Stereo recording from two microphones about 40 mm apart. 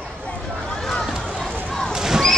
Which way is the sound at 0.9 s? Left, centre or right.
Centre.